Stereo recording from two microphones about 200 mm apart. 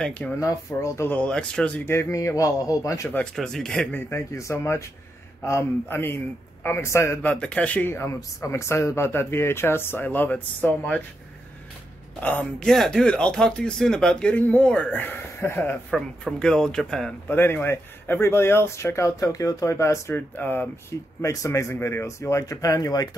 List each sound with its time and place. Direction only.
0.0 s speech: 5° left (ahead or behind)
12.2 s speech: 5° left (ahead or behind)